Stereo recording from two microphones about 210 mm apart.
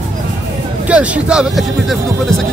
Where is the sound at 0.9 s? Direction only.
5° right (ahead or behind).